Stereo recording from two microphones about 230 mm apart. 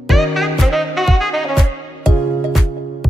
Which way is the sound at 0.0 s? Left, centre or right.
Centre.